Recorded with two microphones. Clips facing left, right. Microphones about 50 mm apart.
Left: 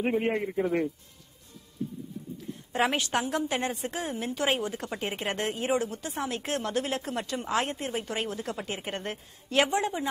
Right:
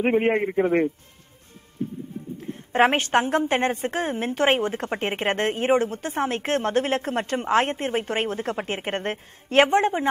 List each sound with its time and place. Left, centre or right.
0.0 s a man's voice: right
2.3 s a woman's voice: right